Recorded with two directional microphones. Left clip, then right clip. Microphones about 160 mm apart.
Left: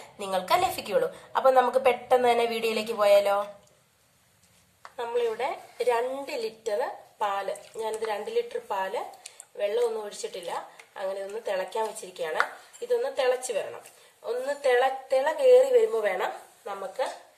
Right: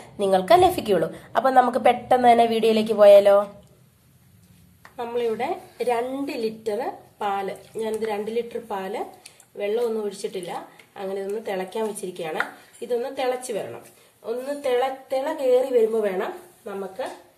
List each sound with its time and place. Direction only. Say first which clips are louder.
0.0 s a woman's voice: right 9 dB; 30° right (ahead or behind)
4.8 s a sound: right 1 dB; centre (ahead or behind)
5.4 s a woman's voice: right 2 dB; centre (ahead or behind)
15.9 s speech: right 3 dB; 10° left (ahead or behind)